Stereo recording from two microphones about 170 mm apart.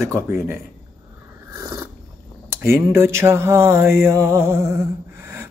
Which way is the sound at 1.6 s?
20° right (ahead or behind).